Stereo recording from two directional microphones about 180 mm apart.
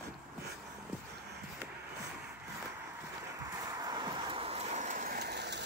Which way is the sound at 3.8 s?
25° right (ahead or behind).